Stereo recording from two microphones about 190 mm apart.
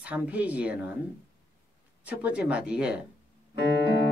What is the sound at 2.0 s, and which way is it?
Speech, 5° right (ahead or behind).